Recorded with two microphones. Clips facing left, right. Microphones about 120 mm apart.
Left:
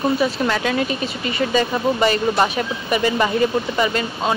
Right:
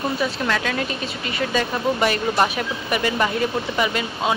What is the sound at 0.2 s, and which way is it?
Speech, 5° left (ahead or behind).